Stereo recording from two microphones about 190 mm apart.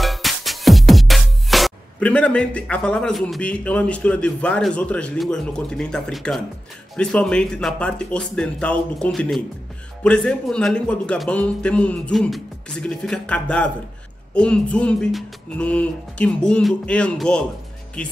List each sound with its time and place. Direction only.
0.0 s music: centre (ahead or behind)
7.0 s speech: 5° left (ahead or behind)